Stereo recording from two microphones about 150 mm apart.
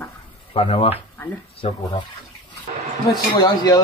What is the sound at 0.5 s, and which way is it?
Speech, 40° left (ahead or behind).